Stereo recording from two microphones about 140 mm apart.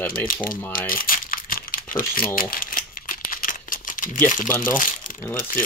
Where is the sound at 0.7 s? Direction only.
90° left; by 4.2 s 70° left (ahead or behind).